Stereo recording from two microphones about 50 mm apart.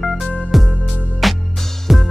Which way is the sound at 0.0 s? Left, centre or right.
Centre.